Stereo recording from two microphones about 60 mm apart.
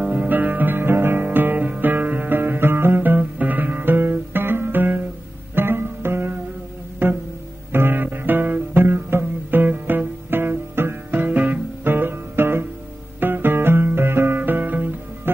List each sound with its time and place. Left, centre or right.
0.1 s music: right